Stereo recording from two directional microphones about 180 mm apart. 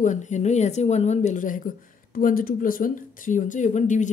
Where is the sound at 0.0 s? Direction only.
40° left (ahead or behind).